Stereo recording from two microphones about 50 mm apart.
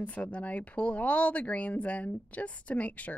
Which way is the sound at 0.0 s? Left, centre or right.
Left.